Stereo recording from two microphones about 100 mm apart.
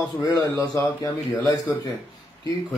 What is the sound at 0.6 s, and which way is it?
Speech, 30° left (ahead or behind).